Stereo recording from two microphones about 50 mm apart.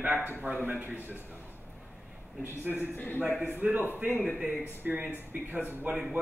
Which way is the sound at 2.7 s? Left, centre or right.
Left.